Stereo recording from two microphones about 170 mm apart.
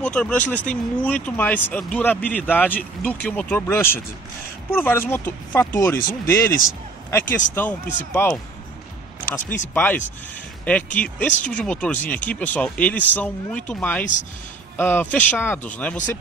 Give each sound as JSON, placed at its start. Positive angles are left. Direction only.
{"t": 0.0, "sound": "speech", "side_deg": 5}
{"t": 9.8, "sound": "speech", "side_deg": 10}
{"t": 11.2, "sound": "speech", "side_deg": 5}